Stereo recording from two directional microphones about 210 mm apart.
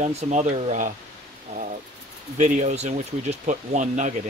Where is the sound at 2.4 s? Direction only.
35° right (ahead or behind).